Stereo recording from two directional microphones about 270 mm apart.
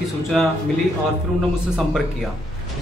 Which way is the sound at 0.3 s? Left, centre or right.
Centre.